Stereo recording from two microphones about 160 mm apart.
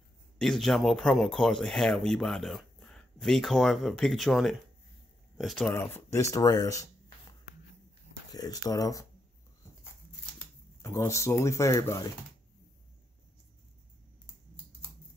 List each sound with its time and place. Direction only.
0.4 s speech: centre (ahead or behind)
5.7 s speech: 15° left (ahead or behind)
8.3 s speech: 25° left (ahead or behind)
10.8 s speech: 20° left (ahead or behind)